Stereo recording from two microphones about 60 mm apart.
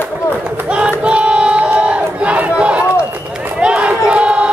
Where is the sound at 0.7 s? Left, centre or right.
Centre.